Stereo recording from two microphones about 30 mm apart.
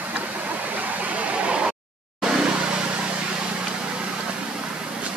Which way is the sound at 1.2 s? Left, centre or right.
Right.